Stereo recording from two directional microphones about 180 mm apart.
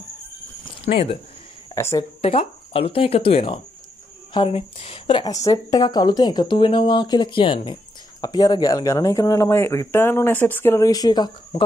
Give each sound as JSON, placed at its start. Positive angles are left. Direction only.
{"t": 0.8, "sound": "speech", "side_deg": 35}
{"t": 1.8, "sound": "speech", "side_deg": 15}
{"t": 2.2, "sound": "speech", "side_deg": 35}